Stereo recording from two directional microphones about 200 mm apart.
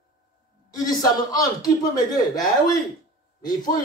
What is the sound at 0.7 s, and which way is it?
Speech, 20° left (ahead or behind).